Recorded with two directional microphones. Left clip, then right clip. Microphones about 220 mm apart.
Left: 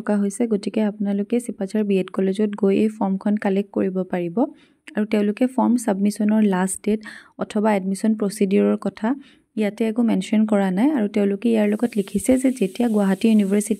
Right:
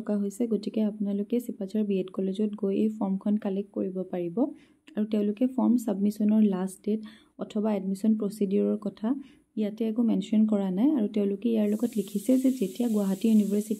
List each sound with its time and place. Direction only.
0.0 s speech: 30° left (ahead or behind)